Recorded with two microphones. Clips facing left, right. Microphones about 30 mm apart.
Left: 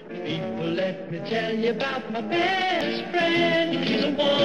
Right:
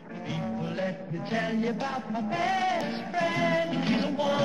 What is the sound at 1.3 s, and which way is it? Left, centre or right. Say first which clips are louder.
Music: left 4 dB; left.